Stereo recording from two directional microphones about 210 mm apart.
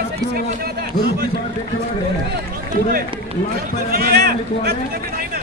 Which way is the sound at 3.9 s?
45° right (ahead or behind).